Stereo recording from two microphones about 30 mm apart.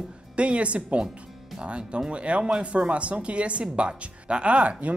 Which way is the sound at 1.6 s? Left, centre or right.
Right.